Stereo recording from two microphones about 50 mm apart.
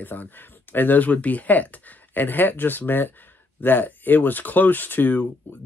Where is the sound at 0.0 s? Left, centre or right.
Left.